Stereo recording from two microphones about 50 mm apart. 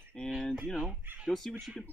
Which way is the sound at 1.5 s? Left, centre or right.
Centre.